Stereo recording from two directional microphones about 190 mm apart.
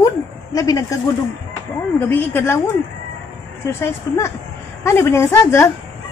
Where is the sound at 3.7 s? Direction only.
15° left (ahead or behind).